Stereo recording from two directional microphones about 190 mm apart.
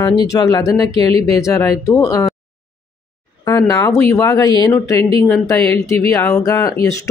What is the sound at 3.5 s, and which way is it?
Speech, 15° left (ahead or behind).